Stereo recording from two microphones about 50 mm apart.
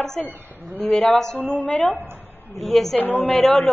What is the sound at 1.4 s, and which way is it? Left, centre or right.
Speech, left.